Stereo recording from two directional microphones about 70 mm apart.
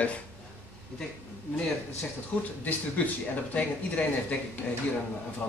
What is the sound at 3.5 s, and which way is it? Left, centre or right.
Speech, left.